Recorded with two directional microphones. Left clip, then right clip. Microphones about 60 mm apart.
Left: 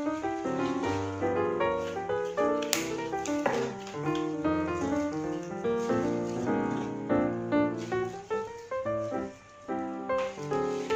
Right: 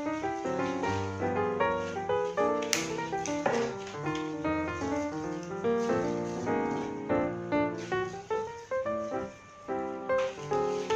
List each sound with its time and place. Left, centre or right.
0.0 s music: centre